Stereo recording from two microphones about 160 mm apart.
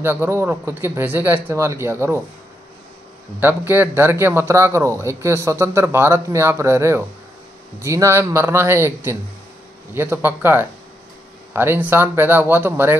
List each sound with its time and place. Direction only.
0.0 s a man's voice: 15° right (ahead or behind)
3.3 s a man's voice: 10° right (ahead or behind)